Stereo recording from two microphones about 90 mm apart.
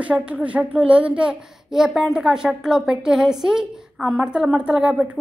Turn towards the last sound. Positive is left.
turn(degrees=-10)  # may be behind; listen again after turning